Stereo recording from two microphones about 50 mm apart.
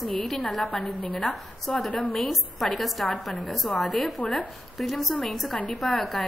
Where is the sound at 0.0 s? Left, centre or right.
Centre.